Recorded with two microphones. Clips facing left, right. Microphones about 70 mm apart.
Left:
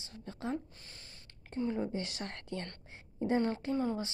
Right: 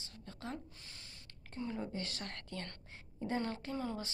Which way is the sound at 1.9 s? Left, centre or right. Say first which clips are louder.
Left 4 dB; centre.